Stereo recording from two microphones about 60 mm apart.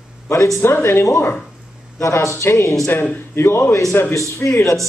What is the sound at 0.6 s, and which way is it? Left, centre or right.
Speech, left.